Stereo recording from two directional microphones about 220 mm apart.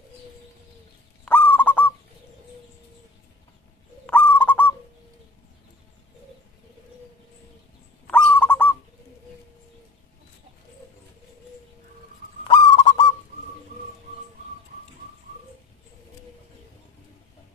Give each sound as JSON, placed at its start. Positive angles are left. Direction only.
{"t": 1.2, "sound": "goose", "side_deg": 5}
{"t": 4.0, "sound": "owl", "side_deg": 5}
{"t": 8.1, "sound": "owl", "side_deg": 5}
{"t": 12.4, "sound": "owl", "side_deg": 20}